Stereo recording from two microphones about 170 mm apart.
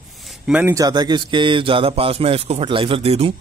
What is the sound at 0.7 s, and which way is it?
Speech, 25° right (ahead or behind).